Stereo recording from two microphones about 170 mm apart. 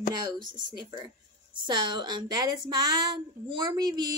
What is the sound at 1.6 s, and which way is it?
A woman's voice, 25° right (ahead or behind).